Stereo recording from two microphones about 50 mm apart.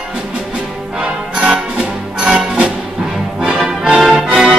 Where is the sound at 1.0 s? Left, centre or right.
Centre.